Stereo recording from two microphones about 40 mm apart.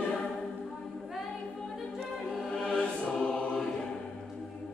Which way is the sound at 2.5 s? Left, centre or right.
Left.